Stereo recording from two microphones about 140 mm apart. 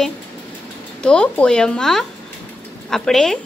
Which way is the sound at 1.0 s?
5° left (ahead or behind).